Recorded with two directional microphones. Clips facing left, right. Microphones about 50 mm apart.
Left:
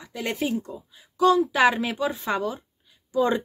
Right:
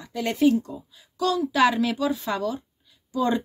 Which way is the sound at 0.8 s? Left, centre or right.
Left.